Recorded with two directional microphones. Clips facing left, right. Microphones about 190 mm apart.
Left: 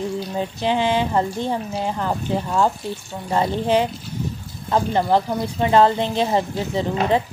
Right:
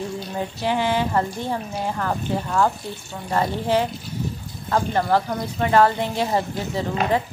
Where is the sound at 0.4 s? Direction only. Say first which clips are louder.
Left 2 dB; 20° left (ahead or behind).